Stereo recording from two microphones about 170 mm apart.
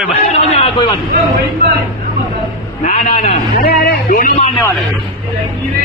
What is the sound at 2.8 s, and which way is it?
A man's voice, 40° left (ahead or behind).